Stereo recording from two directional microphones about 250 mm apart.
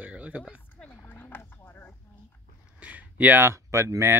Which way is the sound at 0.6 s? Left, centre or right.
Centre.